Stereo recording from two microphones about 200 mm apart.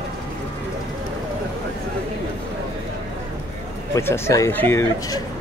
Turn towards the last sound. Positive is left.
turn(degrees=15)  # may be behind; listen again after turning